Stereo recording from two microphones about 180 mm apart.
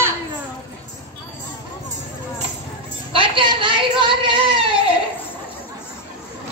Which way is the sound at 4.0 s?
30° right (ahead or behind).